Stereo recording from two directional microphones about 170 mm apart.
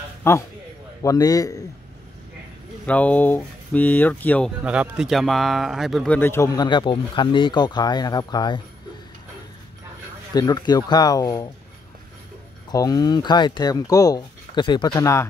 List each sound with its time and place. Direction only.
0.2 s speech: 15° left (ahead or behind)
2.9 s speech: 10° left (ahead or behind)
4.6 s speech: 5° right (ahead or behind)
6.1 s speech: 15° left (ahead or behind)
10.3 s speech: 25° left (ahead or behind)
12.7 s speech: 20° left (ahead or behind)